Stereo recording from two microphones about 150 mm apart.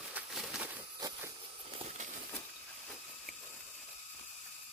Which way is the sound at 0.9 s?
25° right (ahead or behind).